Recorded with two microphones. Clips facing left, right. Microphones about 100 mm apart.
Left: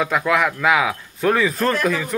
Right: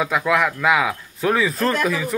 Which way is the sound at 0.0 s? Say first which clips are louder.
Even; centre (ahead or behind).